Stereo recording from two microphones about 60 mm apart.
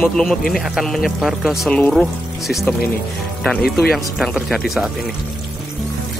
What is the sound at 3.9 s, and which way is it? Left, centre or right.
Speech, centre.